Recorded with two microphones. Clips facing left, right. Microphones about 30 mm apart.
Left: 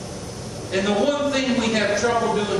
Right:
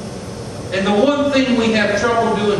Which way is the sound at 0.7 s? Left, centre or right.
Centre.